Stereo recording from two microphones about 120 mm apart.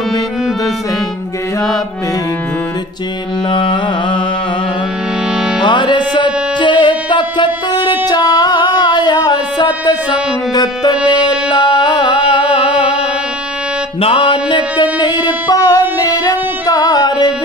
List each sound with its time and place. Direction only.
3.4 s carnatic music: 40° left (ahead or behind)
5.3 s music: 5° right (ahead or behind)
5.6 s music: 40° left (ahead or behind)
12.6 s music: 10° right (ahead or behind)
14.0 s mantra: 45° left (ahead or behind); by 15.8 s 30° left (ahead or behind)
16.1 s music: 30° left (ahead or behind)